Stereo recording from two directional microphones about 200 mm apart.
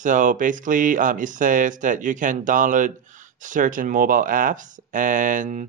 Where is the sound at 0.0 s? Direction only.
40° right (ahead or behind).